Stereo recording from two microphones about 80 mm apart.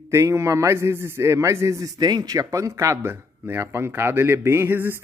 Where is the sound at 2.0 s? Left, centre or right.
Right.